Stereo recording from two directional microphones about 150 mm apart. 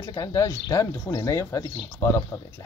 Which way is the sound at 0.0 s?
25° left (ahead or behind).